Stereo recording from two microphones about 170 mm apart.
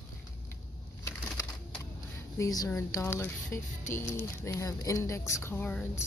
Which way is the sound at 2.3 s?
20° left (ahead or behind).